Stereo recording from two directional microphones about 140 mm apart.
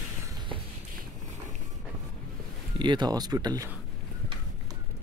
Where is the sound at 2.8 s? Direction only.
30° right (ahead or behind).